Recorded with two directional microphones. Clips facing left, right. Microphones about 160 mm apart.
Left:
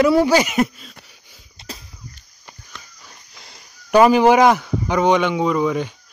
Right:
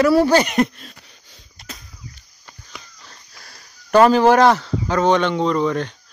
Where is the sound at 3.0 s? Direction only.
15° left (ahead or behind).